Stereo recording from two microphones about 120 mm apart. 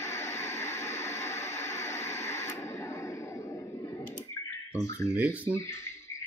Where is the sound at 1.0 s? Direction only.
25° left (ahead or behind).